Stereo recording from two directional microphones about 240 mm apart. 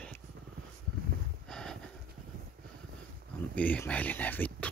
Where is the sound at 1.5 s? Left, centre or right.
Centre.